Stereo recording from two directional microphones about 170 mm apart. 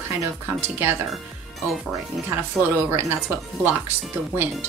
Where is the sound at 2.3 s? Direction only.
10° right (ahead or behind).